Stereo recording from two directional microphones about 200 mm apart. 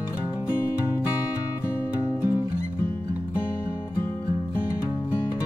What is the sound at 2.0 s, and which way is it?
Music, 15° left (ahead or behind).